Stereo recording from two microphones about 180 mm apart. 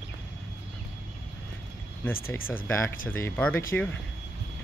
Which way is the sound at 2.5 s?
10° left (ahead or behind).